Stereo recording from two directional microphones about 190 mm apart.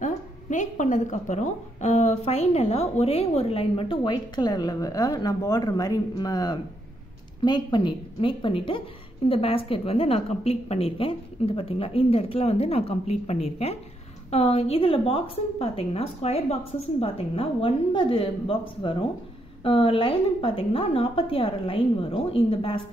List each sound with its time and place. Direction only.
0.0 s a woman's voice: 40° left (ahead or behind)